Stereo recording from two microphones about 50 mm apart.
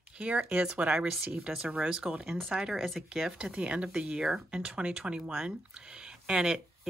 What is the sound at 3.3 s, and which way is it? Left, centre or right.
Speech, centre.